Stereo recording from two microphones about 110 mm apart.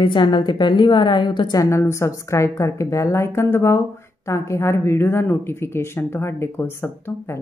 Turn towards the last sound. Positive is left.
turn(degrees=25)  # may be behind; listen again after turning